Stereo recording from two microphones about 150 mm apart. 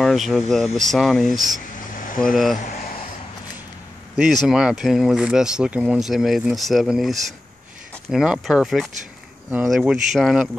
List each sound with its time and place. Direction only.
0.0 s speech: centre (ahead or behind)
2.0 s a sound: 65° left (ahead or behind)
2.3 s speech: centre (ahead or behind)
4.2 s speech: centre (ahead or behind)